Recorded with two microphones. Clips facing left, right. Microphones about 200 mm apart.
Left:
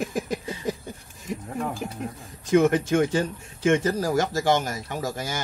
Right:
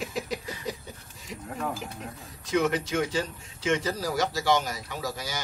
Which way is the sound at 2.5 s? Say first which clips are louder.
Left 7 dB; 50° left (ahead or behind).